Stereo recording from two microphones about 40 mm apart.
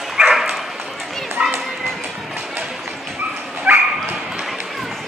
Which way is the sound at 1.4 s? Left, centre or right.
Right.